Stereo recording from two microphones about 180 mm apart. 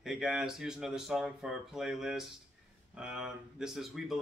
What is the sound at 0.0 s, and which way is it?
Speech, centre (ahead or behind).